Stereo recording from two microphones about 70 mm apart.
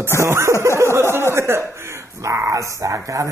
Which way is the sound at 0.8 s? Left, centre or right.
Right.